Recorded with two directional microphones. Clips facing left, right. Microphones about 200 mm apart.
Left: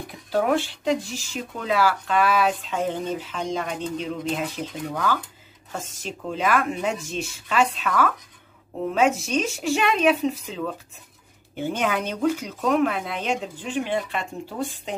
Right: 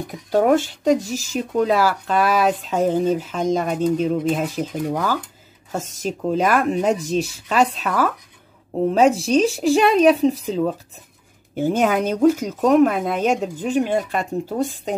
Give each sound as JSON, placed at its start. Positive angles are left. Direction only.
{"t": 0.1, "sound": "speech", "side_deg": -45}